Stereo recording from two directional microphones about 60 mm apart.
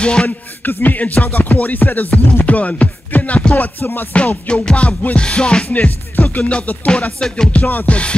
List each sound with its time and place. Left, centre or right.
0.0 s music: centre
0.7 s music: left
7.6 s music: left